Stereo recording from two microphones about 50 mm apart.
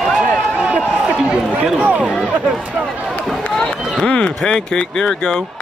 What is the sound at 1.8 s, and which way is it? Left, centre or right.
Speech, right.